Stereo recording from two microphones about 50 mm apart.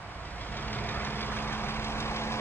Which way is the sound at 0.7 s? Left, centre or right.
Left.